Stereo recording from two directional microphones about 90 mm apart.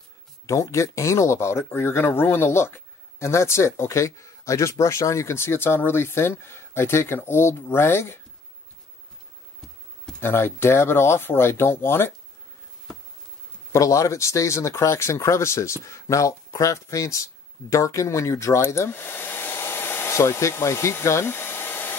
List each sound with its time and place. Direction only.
0.5 s speech: 35° left (ahead or behind)
10.2 s speech: 25° left (ahead or behind)
13.7 s speech: 35° left (ahead or behind)